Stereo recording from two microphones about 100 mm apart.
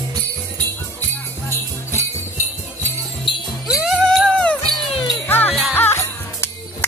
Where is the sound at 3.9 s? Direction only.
5° left (ahead or behind).